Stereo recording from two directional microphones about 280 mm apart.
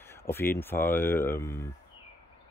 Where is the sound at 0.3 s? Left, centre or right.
Centre.